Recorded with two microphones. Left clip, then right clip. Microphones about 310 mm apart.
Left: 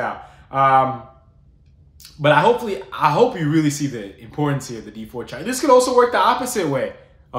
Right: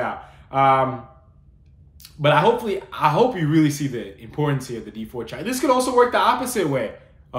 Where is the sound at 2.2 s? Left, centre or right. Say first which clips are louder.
Left 2 dB; centre.